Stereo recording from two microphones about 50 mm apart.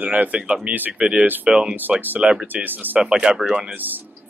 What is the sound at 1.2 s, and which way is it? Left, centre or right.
Speech, right.